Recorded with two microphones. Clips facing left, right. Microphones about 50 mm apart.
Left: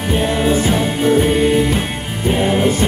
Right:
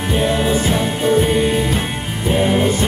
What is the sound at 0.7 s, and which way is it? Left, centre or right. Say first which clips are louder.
Music: left 1 dB; centre.